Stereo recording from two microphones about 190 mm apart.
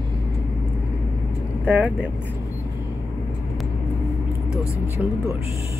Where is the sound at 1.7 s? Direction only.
10° right (ahead or behind).